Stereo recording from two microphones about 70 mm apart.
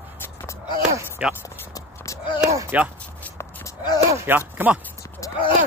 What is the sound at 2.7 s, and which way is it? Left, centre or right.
Speech, right.